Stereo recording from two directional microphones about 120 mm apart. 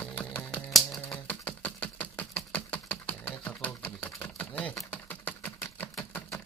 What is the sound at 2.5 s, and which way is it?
Typewriter, 15° left (ahead or behind).